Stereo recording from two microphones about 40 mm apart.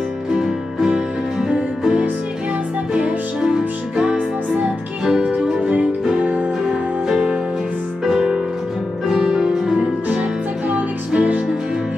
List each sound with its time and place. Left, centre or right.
0.4 s music: centre; by 3.4 s right
3.4 s music: centre
6.2 s music: right
8.0 s music: centre
9.2 s music: right
10.7 s music: right